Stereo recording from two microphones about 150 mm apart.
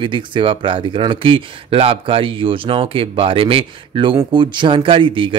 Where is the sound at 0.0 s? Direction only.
35° right (ahead or behind).